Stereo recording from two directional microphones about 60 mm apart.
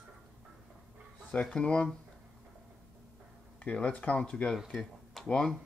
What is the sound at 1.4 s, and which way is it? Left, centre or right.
Speech, centre.